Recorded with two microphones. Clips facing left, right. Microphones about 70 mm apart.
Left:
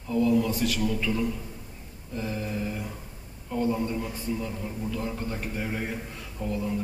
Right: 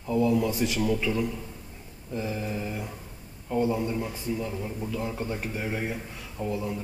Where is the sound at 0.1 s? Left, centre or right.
Centre.